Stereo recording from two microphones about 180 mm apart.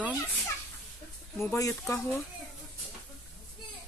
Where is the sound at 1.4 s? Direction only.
15° left (ahead or behind).